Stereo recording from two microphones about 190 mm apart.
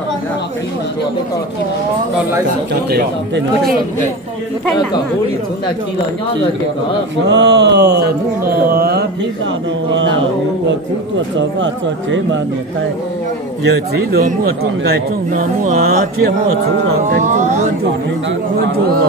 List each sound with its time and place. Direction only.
2.7 s speech: 60° right (ahead or behind)
7.2 s speech: 65° right (ahead or behind)
11.3 s speech: 75° right (ahead or behind)
13.7 s speech: 55° right (ahead or behind)
17.2 s speech: 40° right (ahead or behind)